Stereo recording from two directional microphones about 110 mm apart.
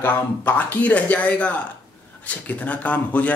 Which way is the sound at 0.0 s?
20° left (ahead or behind).